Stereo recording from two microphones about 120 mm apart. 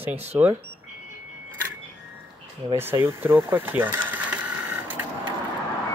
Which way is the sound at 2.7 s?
20° right (ahead or behind).